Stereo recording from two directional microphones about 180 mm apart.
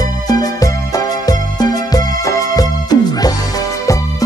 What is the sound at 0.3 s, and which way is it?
Music, 20° left (ahead or behind).